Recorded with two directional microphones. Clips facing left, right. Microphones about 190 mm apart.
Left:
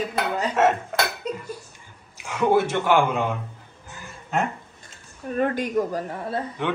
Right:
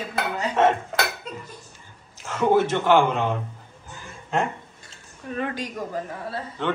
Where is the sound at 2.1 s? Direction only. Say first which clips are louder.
Even; 10° left (ahead or behind).